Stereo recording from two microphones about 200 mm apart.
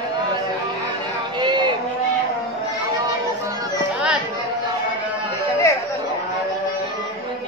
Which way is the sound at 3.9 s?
5° right (ahead or behind).